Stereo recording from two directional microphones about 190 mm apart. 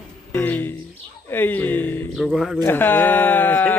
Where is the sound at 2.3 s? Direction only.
Centre (ahead or behind).